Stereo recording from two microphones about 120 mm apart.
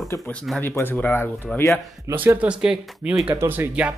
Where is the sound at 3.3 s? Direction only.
20° right (ahead or behind).